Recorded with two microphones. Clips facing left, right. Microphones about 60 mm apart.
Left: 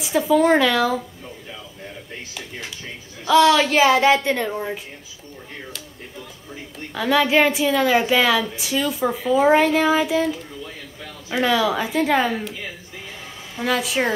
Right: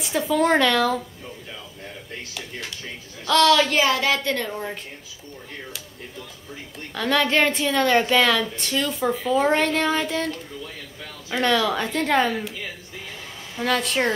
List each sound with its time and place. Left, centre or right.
0.0 s a woman's voice: centre
3.3 s a woman's voice: centre
6.9 s a woman's voice: centre
13.6 s a woman's voice: centre